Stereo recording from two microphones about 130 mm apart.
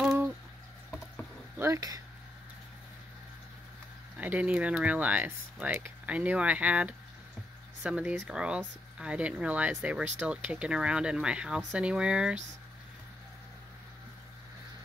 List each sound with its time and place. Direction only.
0.0 s a sound: 10° right (ahead or behind)
1.6 s speech: 25° right (ahead or behind)
4.2 s speech: 10° right (ahead or behind)